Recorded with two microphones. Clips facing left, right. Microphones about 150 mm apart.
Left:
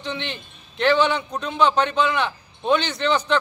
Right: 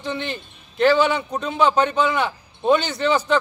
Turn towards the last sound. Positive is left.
turn(degrees=-10)  # may be behind; listen again after turning